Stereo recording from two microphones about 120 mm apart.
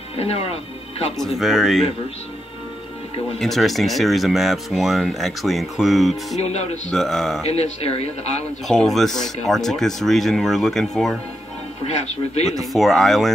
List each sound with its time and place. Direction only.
0.2 s speech: 60° left (ahead or behind)
1.1 s speech: centre (ahead or behind)
3.3 s speech: centre (ahead or behind)
6.3 s speech: 65° left (ahead or behind)
6.9 s speech: 5° left (ahead or behind)
7.4 s speech: 60° left (ahead or behind)
8.6 s speech: centre (ahead or behind)
12.7 s speech: centre (ahead or behind)